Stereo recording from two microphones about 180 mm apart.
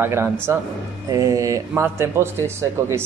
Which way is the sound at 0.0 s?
15° right (ahead or behind).